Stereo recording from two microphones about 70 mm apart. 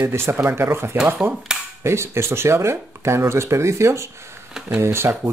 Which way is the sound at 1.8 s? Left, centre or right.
Right.